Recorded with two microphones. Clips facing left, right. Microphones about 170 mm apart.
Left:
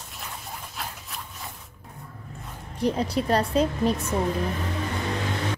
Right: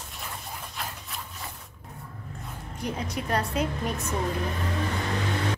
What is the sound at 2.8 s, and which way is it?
A woman's voice, 35° left (ahead or behind).